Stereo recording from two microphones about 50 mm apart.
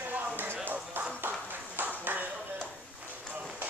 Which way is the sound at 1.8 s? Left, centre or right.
Right.